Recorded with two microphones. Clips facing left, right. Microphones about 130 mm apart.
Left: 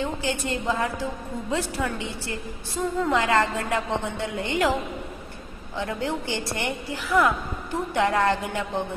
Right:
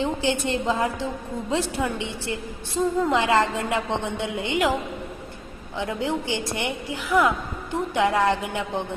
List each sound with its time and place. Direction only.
0.0 s a woman's voice: 20° right (ahead or behind)
5.8 s a woman's voice: 15° right (ahead or behind)